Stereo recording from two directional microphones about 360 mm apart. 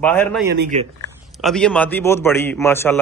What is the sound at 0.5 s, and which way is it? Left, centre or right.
Speech, right.